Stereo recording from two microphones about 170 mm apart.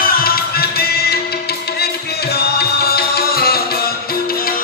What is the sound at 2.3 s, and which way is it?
Music, 70° left (ahead or behind).